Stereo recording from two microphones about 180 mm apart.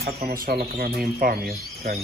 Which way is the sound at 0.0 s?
55° right (ahead or behind).